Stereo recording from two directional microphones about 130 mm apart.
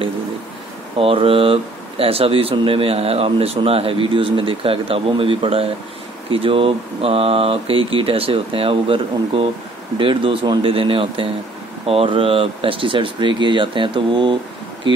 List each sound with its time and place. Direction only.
0.9 s speech: 45° right (ahead or behind)